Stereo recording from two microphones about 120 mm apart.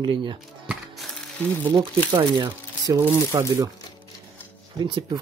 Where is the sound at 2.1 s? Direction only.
35° right (ahead or behind).